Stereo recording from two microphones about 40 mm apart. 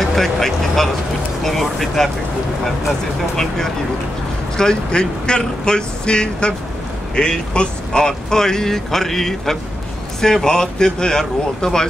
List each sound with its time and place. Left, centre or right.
0.0 s speech: centre